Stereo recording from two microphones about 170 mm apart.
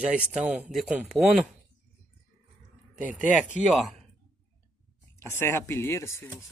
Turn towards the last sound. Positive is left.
turn(degrees=15)  # may be behind; listen again after turning